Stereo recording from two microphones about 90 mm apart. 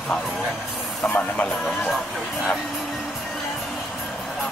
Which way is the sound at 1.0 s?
20° left (ahead or behind).